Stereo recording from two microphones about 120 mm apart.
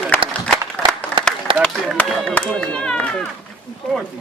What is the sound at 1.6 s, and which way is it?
Speech, 10° left (ahead or behind).